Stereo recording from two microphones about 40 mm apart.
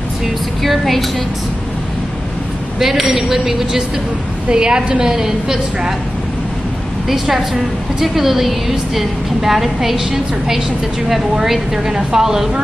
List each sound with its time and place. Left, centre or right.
0.7 s a woman's voice: centre
2.8 s a woman's voice: centre
4.5 s a woman's voice: right
7.1 s a woman's voice: centre